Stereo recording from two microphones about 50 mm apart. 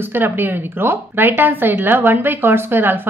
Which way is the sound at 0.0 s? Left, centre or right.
Right.